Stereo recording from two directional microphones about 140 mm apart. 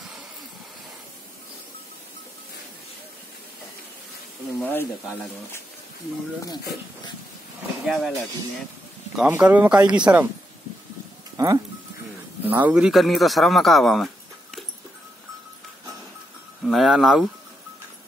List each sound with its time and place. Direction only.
4.6 s speech: 15° left (ahead or behind)
7.8 s speech: centre (ahead or behind)
9.1 s speech: 10° right (ahead or behind)
11.3 s speech: 25° right (ahead or behind)
12.6 s speech: 5° right (ahead or behind)
16.6 s speech: centre (ahead or behind)